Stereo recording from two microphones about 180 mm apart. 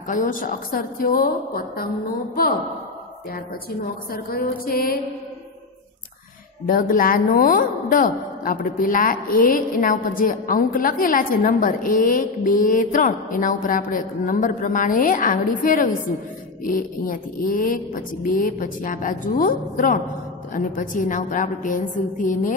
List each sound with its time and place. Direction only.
0.1 s a woman's voice: 50° left (ahead or behind)
3.8 s a woman's voice: 55° left (ahead or behind)
6.6 s a woman's voice: 55° left (ahead or behind)